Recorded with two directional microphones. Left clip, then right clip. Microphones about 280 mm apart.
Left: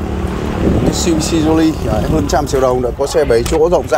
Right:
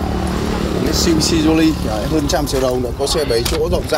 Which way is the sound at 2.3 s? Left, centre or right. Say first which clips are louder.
Left 6 dB; centre.